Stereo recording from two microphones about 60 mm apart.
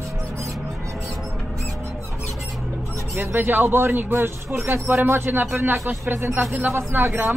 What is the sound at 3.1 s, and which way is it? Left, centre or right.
Speech, right.